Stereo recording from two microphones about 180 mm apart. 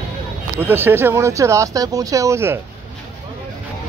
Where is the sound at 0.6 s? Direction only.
10° right (ahead or behind).